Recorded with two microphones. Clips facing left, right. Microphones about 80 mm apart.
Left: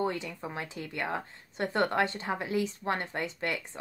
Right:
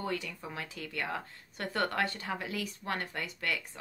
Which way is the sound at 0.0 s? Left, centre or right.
Left.